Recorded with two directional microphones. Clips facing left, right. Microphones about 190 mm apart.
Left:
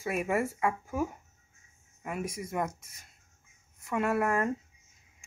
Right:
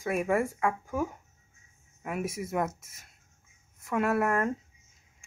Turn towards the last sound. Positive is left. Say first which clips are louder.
# right 1 dB
turn(degrees=0)  # may be behind; listen again after turning